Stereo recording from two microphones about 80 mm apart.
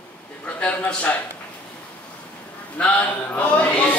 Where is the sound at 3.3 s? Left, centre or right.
Centre.